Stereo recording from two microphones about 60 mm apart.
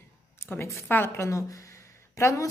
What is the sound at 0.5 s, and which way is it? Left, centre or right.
Speech, left.